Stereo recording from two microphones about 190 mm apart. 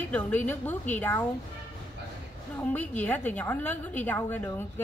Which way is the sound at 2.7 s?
10° left (ahead or behind).